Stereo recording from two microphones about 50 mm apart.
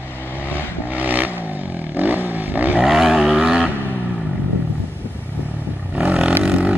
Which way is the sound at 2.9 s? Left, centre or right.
Centre.